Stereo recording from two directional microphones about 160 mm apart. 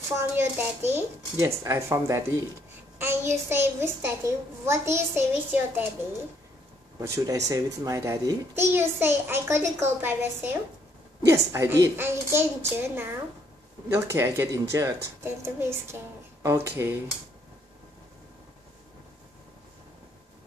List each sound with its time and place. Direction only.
0.1 s a child's voice: 15° right (ahead or behind)
7.0 s a child's voice: 20° right (ahead or behind)